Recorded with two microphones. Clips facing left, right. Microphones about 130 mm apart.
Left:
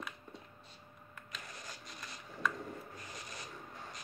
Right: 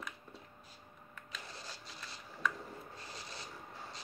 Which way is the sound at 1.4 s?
30° right (ahead or behind).